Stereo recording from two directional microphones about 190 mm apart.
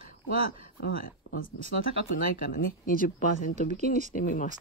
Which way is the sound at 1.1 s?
45° left (ahead or behind).